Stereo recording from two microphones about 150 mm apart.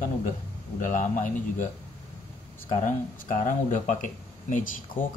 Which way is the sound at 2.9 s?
60° left (ahead or behind).